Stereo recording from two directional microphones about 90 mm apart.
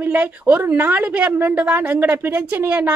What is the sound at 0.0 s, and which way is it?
A woman's voice, 20° right (ahead or behind).